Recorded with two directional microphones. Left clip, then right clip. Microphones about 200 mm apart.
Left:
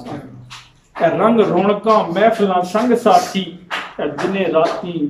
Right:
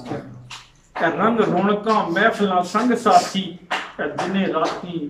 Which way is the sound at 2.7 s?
15° left (ahead or behind).